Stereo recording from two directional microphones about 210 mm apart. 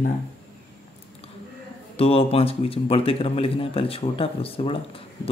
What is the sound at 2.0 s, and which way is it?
Speech, 25° left (ahead or behind).